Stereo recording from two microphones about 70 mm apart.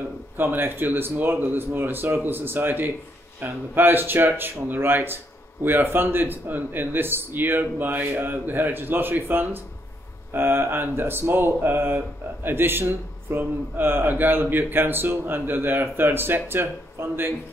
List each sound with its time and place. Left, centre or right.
0.4 s a man's voice: right